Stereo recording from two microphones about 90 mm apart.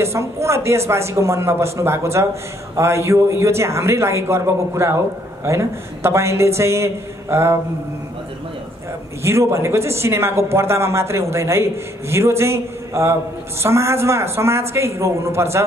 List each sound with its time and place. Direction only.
0.0 s a man's voice: 30° right (ahead or behind)
9.2 s speech: 30° right (ahead or behind)